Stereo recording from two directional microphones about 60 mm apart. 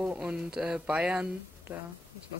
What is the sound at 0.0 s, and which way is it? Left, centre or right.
Speech, right.